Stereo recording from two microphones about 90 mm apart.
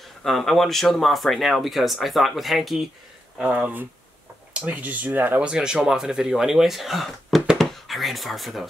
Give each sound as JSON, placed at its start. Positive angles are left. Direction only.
{"t": 0.2, "sound": "speech", "side_deg": 0}
{"t": 3.3, "sound": "speech", "side_deg": -15}